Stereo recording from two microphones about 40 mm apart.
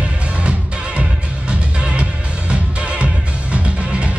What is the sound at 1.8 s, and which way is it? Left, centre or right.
Music, right.